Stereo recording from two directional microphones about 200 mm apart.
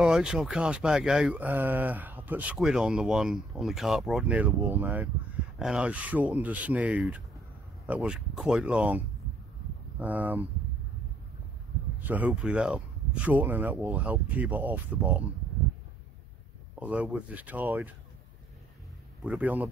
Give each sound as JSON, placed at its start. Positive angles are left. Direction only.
{"t": 0.0, "sound": "speech", "side_deg": -5}
{"t": 12.0, "sound": "speech", "side_deg": -10}
{"t": 16.8, "sound": "speech", "side_deg": -5}
{"t": 19.2, "sound": "speech", "side_deg": -5}